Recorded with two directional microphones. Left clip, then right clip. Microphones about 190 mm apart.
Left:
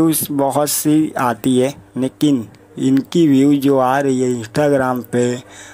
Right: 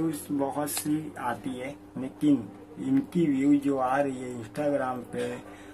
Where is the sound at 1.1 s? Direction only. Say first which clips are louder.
Left 16 dB; 50° left (ahead or behind).